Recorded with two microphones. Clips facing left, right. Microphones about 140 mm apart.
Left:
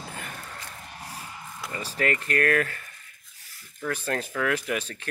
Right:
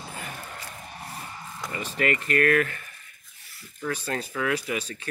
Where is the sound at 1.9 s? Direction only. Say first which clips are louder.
Right 1 dB; 40° left (ahead or behind).